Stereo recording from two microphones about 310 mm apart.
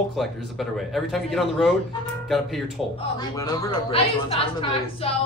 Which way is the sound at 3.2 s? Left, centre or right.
Centre.